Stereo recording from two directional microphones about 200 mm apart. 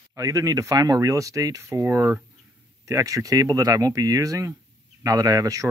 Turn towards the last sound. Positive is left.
turn(degrees=-15)  # may be behind; listen again after turning